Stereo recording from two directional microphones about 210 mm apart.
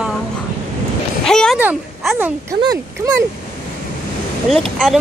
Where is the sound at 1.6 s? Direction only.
10° right (ahead or behind).